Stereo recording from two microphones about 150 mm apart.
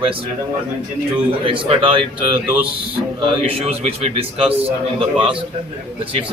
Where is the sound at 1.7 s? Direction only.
35° right (ahead or behind).